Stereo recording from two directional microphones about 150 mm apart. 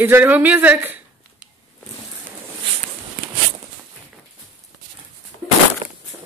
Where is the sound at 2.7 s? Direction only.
40° right (ahead or behind).